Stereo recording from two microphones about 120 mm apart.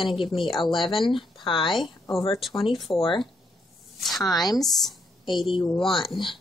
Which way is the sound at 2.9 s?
45° left (ahead or behind).